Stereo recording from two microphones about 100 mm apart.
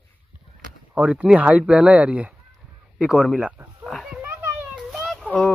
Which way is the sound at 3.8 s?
Centre (ahead or behind).